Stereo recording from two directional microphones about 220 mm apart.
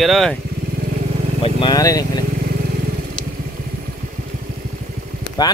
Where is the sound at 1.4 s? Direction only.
20° left (ahead or behind).